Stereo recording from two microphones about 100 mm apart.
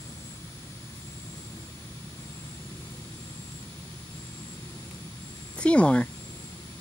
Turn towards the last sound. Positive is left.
turn(degrees=10)  # may be behind; listen again after turning